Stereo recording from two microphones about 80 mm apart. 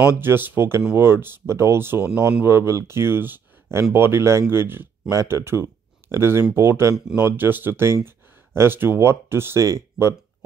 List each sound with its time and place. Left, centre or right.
0.0 s speech: right